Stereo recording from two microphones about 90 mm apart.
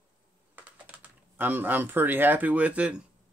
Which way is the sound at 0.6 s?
20° right (ahead or behind).